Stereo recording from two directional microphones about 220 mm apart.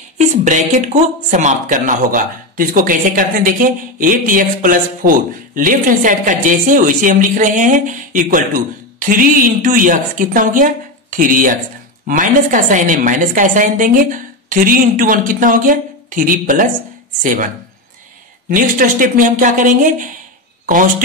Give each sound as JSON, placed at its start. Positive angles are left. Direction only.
{"t": 0.3, "sound": "speech", "side_deg": -35}
{"t": 18.5, "sound": "speech", "side_deg": -40}